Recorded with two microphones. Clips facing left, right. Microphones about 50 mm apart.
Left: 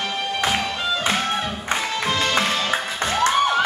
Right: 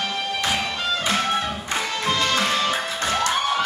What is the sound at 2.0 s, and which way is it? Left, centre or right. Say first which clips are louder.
Music: right 2 dB; centre.